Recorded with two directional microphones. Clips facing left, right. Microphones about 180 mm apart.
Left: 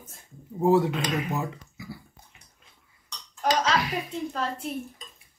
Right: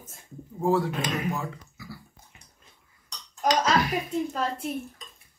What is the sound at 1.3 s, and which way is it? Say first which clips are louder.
Dog: left 3 dB; 20° left (ahead or behind).